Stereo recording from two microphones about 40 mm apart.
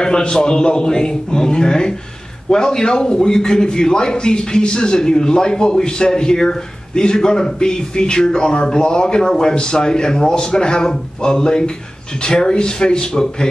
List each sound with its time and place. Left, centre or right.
0.0 s a man's voice: left